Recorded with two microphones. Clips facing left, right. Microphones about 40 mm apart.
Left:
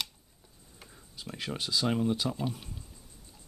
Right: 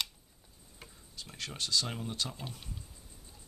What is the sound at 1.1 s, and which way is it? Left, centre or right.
Speech, centre.